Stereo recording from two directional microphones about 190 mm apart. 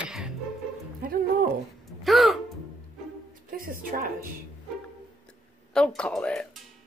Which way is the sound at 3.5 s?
50° right (ahead or behind).